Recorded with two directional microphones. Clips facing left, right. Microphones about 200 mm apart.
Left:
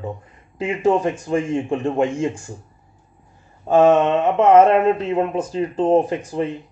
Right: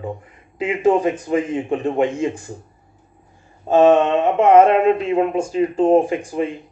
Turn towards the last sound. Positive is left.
turn(degrees=-10)  # may be behind; listen again after turning